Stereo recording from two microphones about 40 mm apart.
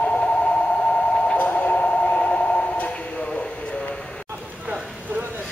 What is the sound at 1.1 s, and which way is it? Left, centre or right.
Train, left.